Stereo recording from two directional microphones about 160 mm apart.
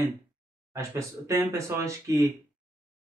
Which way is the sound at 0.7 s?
20° right (ahead or behind).